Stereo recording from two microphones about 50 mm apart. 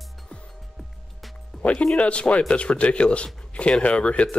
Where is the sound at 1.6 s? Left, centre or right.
Left.